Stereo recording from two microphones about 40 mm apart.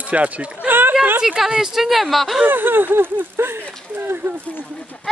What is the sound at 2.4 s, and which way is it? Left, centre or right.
Speech, right.